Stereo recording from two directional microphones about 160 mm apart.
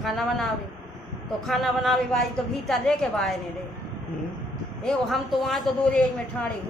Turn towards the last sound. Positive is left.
turn(degrees=5)  # may be behind; listen again after turning